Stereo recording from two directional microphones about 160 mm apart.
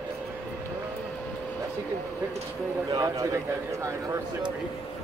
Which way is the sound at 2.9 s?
20° right (ahead or behind).